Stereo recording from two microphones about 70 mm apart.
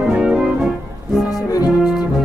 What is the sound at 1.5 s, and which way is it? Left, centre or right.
Brass instrument, left.